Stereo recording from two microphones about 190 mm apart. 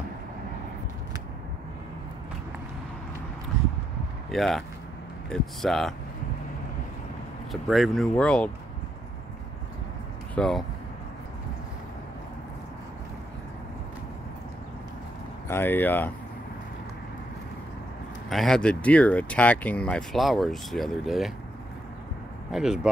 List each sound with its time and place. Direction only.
4.3 s speech: centre (ahead or behind)
7.6 s speech: centre (ahead or behind)
10.3 s speech: 5° left (ahead or behind)
15.4 s speech: 10° left (ahead or behind)
18.3 s speech: centre (ahead or behind)
22.5 s speech: 5° right (ahead or behind)